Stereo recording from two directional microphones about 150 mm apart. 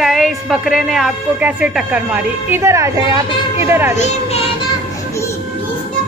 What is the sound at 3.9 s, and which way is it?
Speech, 45° left (ahead or behind).